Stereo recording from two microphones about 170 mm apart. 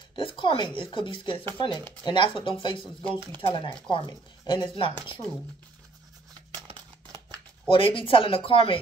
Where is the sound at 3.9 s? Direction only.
25° left (ahead or behind).